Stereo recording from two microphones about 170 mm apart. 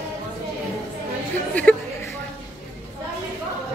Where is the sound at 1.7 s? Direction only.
10° left (ahead or behind).